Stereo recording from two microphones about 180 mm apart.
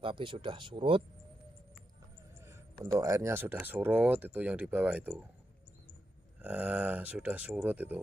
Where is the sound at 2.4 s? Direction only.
15° right (ahead or behind).